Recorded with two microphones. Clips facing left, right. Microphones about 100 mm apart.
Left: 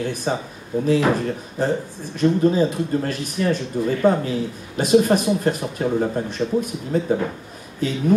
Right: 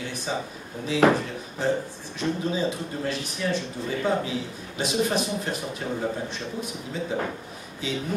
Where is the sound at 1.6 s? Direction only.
45° left (ahead or behind).